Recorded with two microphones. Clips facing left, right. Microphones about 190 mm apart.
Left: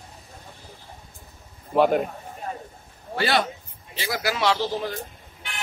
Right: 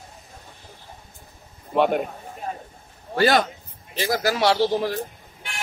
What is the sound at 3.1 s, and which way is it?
A man's voice, 45° right (ahead or behind).